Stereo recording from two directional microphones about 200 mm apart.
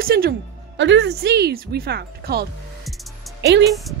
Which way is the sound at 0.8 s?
60° right (ahead or behind).